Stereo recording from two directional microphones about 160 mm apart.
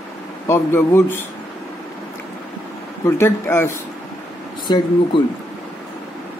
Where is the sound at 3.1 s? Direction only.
15° left (ahead or behind).